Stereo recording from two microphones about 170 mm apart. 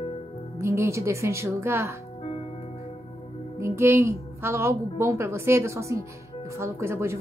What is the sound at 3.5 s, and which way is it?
A woman's voice, 15° right (ahead or behind).